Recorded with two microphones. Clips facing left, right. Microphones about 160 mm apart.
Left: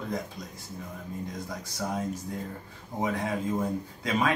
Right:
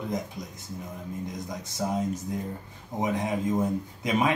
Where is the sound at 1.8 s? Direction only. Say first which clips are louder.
Right 3 dB; 15° right (ahead or behind).